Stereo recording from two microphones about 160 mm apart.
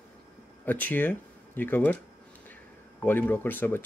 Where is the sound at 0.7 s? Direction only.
10° left (ahead or behind).